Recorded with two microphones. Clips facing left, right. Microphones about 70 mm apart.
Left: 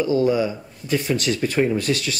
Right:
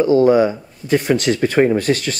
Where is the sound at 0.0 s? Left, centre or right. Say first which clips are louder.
Right 7 dB; right.